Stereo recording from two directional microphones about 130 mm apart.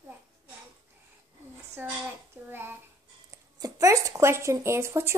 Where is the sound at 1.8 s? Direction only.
15° right (ahead or behind).